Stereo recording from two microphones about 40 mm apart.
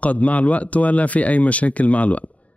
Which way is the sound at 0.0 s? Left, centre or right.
Left.